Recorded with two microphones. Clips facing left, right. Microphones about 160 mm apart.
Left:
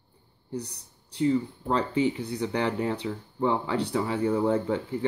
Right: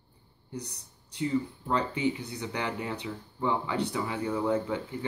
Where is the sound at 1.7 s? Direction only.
30° left (ahead or behind).